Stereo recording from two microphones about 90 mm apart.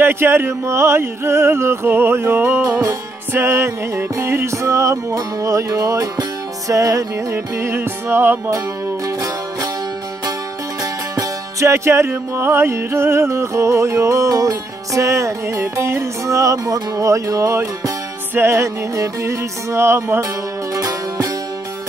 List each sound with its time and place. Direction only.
0.0 s a sound: 25° right (ahead or behind)
3.3 s music: 30° right (ahead or behind)
9.0 s music: 40° right (ahead or behind)
10.8 s music: 35° right (ahead or behind)